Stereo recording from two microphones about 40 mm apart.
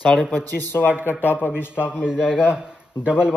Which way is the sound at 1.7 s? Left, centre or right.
Right.